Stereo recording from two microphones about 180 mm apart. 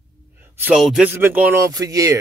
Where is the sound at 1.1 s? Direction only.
10° right (ahead or behind).